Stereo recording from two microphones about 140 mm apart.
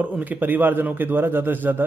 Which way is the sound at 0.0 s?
10° right (ahead or behind).